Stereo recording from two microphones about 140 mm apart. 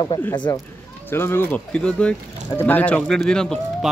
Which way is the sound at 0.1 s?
25° left (ahead or behind).